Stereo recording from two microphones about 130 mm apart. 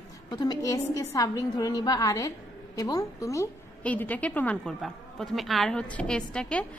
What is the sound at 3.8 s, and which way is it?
A woman's voice, 10° left (ahead or behind).